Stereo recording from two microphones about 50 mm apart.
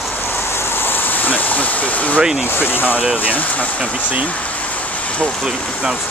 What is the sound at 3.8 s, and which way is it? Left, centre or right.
Speech, right.